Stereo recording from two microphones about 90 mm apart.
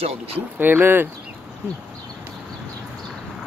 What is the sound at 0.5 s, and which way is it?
Speech, 20° right (ahead or behind).